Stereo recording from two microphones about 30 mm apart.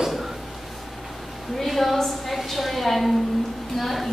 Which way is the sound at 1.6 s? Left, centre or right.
Centre.